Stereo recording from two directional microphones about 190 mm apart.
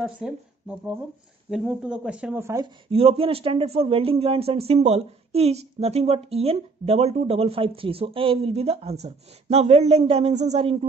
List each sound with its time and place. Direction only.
0.0 s speech: 5° right (ahead or behind)
2.9 s speech: 30° right (ahead or behind)